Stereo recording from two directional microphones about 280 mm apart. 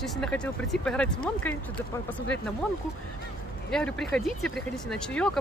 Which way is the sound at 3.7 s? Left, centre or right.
Centre.